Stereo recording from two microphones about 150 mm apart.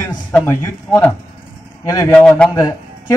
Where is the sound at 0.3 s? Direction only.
20° left (ahead or behind).